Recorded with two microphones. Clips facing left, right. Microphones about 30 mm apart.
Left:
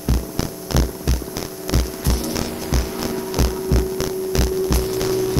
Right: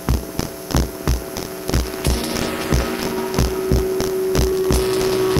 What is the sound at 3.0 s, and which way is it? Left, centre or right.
Hum, centre.